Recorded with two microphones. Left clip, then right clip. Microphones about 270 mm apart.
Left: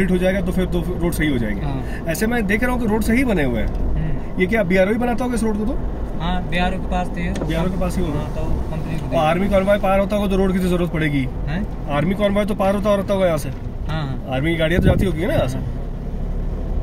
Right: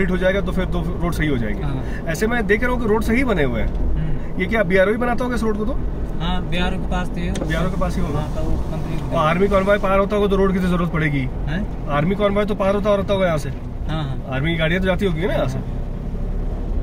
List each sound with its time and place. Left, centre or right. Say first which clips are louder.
0.0 s speech: even; centre
6.5 s speech: left 4 dB; centre
9.1 s speech: even; centre